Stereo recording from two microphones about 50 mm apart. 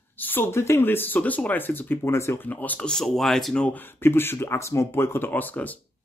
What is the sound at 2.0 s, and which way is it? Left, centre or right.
Speech, left.